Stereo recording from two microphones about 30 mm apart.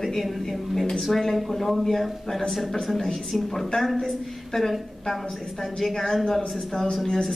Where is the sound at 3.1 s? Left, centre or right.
Centre.